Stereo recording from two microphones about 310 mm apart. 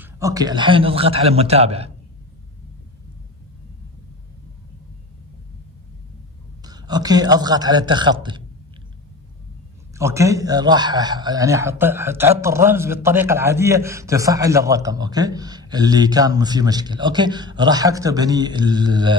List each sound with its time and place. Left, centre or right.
0.0 s speech: centre
6.6 s a man's voice: centre
9.9 s speech: centre